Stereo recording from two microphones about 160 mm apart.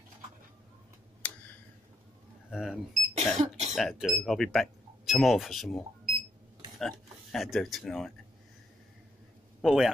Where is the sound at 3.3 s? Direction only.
45° right (ahead or behind).